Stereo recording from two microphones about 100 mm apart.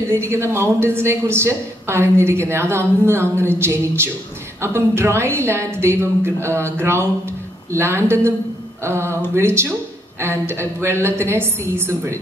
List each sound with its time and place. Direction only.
0.1 s speech: 25° right (ahead or behind)